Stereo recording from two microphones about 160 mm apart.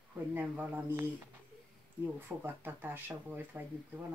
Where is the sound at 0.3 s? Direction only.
10° right (ahead or behind).